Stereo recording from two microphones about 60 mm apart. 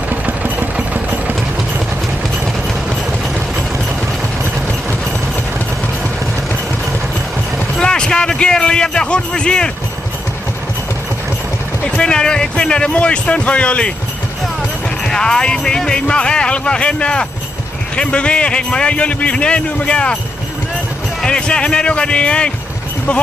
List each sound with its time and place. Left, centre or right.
0.1 s vehicle: right
7.5 s a sound: centre
11.8 s speech: centre
15.0 s speech: centre
21.2 s speech: centre